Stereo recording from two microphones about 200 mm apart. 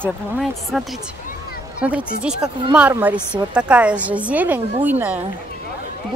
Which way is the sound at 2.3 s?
20° right (ahead or behind).